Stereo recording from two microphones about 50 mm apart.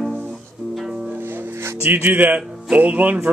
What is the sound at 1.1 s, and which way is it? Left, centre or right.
Music, right.